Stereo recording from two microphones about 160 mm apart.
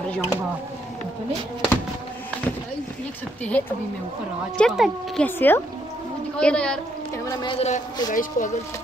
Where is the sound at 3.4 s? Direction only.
10° left (ahead or behind).